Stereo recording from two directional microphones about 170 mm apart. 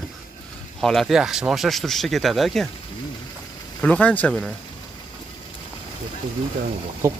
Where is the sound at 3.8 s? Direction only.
5° left (ahead or behind).